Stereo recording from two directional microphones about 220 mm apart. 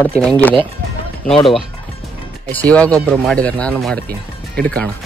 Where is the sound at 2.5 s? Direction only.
5° left (ahead or behind).